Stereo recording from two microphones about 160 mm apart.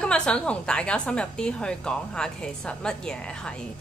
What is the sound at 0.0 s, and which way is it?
A woman's voice, 5° left (ahead or behind).